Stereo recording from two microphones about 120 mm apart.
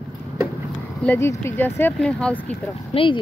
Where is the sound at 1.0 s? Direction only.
15° left (ahead or behind).